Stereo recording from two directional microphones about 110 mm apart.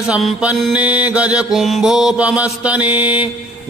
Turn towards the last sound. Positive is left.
turn(degrees=-15)  # may be behind; listen again after turning